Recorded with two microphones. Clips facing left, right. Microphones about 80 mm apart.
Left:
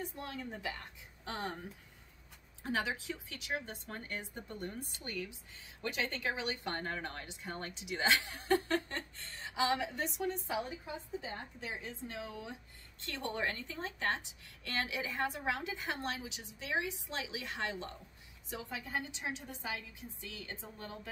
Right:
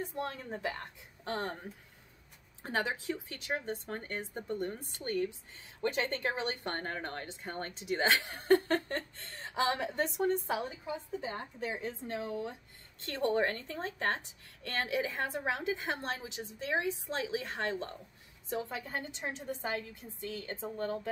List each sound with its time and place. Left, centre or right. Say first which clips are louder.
0.0 s a woman's voice: right 4 dB; right
2.7 s a woman's voice: right 3 dB; right